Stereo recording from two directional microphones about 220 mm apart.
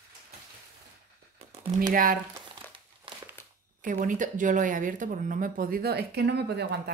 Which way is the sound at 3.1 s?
20° right (ahead or behind).